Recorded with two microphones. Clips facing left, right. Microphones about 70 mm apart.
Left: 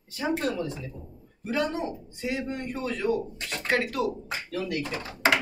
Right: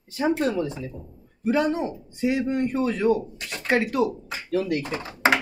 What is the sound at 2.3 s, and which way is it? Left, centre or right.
A man's voice, centre.